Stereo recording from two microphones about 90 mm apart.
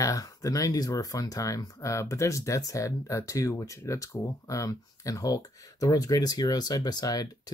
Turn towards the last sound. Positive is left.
turn(degrees=45)  # may be behind; listen again after turning